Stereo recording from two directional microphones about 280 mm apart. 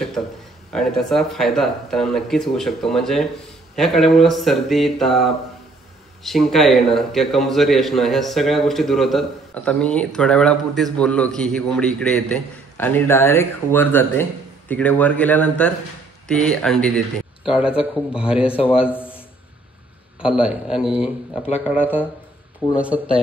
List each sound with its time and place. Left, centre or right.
0.7 s a man's voice: centre
18.5 s a man's voice: centre
18.9 s a sound: centre
20.2 s a man's voice: centre